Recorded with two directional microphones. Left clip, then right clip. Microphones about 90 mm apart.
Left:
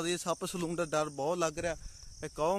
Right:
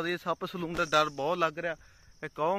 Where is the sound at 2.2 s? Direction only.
15° left (ahead or behind).